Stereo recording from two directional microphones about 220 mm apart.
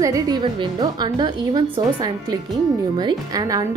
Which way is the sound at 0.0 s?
15° right (ahead or behind).